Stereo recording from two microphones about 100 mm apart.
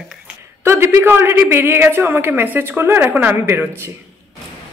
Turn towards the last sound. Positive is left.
turn(degrees=-25)  # may be behind; listen again after turning